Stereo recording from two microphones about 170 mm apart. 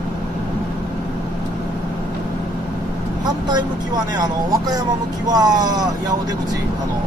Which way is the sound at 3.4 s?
25° right (ahead or behind).